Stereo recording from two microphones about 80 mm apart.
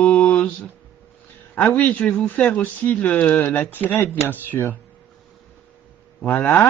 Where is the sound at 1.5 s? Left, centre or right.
Left.